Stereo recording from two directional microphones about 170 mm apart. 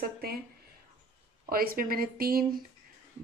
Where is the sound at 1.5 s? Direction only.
60° right (ahead or behind).